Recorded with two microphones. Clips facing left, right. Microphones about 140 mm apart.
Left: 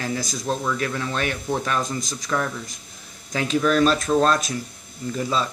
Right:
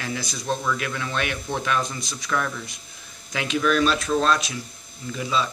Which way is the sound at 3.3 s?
40° left (ahead or behind).